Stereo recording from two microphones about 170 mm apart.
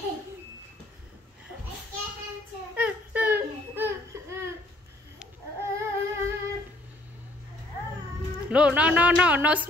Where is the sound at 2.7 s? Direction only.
5° right (ahead or behind).